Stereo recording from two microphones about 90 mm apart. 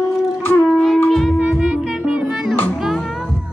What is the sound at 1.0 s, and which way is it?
Music, centre (ahead or behind).